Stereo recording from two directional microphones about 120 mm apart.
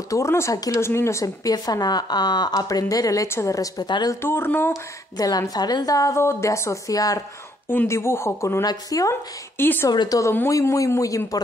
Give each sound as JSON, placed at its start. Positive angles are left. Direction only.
{"t": 0.1, "sound": "speech", "side_deg": 25}
{"t": 4.2, "sound": "speech", "side_deg": 20}
{"t": 5.1, "sound": "speech", "side_deg": 30}
{"t": 7.6, "sound": "speech", "side_deg": 20}
{"t": 9.1, "sound": "a woman's voice", "side_deg": 20}
{"t": 9.8, "sound": "speech", "side_deg": 30}